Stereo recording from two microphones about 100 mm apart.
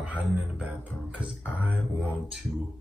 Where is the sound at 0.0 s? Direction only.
10° right (ahead or behind).